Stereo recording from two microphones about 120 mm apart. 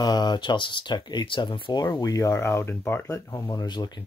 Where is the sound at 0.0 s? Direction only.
35° left (ahead or behind); by 3.2 s 15° left (ahead or behind).